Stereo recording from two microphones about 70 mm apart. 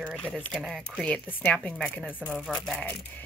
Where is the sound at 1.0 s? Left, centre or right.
Centre.